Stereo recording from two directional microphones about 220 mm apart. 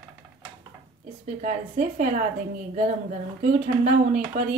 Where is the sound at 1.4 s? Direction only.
35° right (ahead or behind).